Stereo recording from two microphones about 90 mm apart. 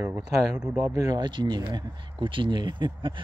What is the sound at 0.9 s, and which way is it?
Speech, 45° right (ahead or behind).